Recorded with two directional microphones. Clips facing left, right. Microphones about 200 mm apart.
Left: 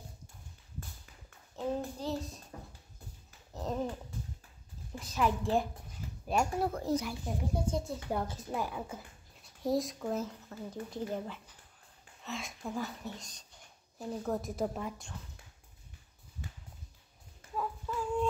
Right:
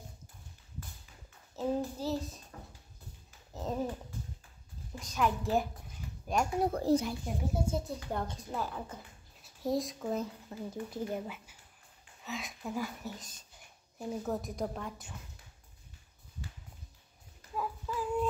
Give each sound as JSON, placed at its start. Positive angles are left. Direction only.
{"t": 1.6, "sound": "a sound", "side_deg": -5}
{"t": 3.5, "sound": "a sound", "side_deg": 0}
{"t": 5.0, "sound": "speech", "side_deg": 0}
{"t": 6.7, "sound": "speech", "side_deg": -30}
{"t": 7.5, "sound": "speech", "side_deg": -5}
{"t": 8.1, "sound": "a woman's voice", "side_deg": 5}
{"t": 17.6, "sound": "child singing", "side_deg": -5}